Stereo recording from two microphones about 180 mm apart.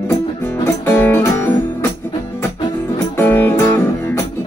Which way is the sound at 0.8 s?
10° left (ahead or behind).